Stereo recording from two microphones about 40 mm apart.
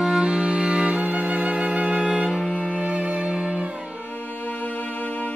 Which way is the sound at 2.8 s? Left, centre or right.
Right.